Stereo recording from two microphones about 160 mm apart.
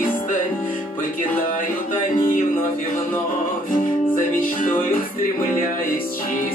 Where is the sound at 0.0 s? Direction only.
55° left (ahead or behind).